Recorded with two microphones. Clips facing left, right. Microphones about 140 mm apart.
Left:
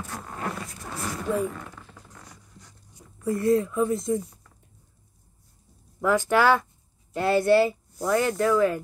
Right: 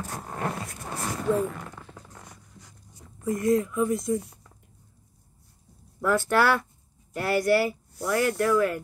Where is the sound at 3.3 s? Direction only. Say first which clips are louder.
Left 1 dB; 30° left (ahead or behind).